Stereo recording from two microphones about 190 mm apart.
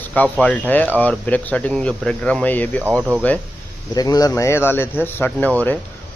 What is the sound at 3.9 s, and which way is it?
A man's voice, 20° left (ahead or behind).